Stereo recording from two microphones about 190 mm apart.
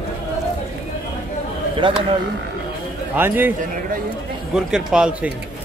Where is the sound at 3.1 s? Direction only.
10° right (ahead or behind).